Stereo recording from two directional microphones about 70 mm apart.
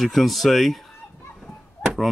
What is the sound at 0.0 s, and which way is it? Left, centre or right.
Speech, centre.